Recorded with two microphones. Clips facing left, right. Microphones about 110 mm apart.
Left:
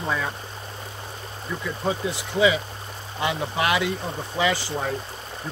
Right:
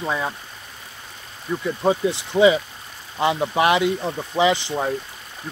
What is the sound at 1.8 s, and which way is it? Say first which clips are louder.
Speech: right 6 dB; 30° right (ahead or behind).